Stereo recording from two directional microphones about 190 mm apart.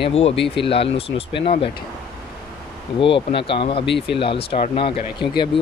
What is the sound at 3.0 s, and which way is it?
Speech, 30° left (ahead or behind).